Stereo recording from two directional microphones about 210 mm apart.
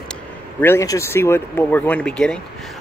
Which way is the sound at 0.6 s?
10° left (ahead or behind).